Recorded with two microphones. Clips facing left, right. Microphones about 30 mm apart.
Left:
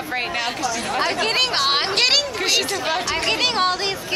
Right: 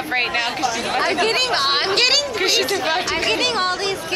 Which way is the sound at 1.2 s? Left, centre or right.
Centre.